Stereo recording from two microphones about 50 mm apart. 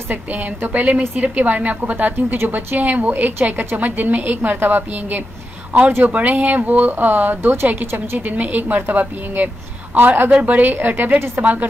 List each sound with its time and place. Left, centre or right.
0.1 s a woman's voice: right
5.7 s a woman's voice: right
8.2 s a woman's voice: right